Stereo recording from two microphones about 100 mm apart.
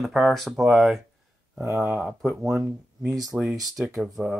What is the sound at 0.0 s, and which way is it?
Speech, centre (ahead or behind).